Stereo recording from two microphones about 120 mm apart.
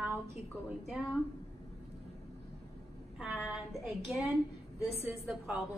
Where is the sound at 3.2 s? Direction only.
5° right (ahead or behind).